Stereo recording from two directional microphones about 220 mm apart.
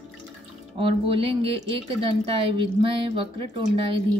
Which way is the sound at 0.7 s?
25° right (ahead or behind).